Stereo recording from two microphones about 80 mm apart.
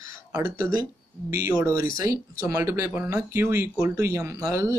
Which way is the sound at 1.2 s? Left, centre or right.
Right.